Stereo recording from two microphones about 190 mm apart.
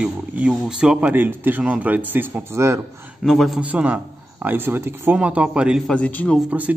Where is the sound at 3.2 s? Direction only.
Centre (ahead or behind).